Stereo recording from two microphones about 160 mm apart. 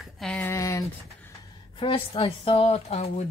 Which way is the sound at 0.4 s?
15° left (ahead or behind).